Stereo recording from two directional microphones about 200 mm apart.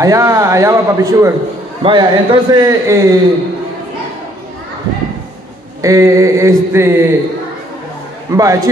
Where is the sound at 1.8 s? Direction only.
25° right (ahead or behind).